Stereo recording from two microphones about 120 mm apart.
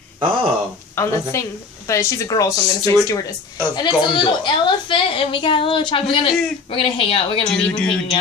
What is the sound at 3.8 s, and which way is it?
A woman's voice, 40° left (ahead or behind).